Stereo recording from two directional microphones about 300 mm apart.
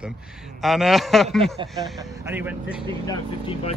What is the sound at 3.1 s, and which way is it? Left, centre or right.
Speech, centre.